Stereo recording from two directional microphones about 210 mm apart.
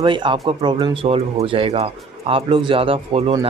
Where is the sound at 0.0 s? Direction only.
20° right (ahead or behind).